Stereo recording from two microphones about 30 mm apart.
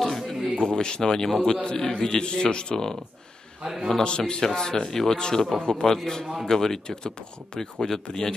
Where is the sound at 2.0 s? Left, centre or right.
Left.